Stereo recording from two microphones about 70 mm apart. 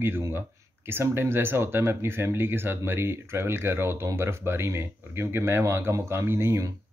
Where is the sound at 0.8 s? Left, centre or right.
Right.